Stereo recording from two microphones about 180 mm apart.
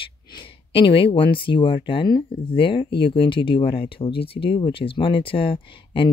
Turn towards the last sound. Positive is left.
turn(degrees=30)  # may be behind; listen again after turning